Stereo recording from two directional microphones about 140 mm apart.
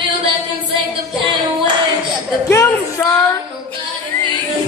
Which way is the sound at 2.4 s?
20° left (ahead or behind).